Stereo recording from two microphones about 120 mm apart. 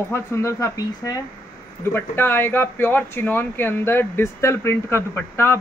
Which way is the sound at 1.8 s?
15° left (ahead or behind).